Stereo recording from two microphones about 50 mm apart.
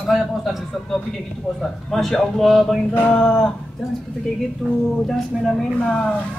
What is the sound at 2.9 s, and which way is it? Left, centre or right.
Speech, left.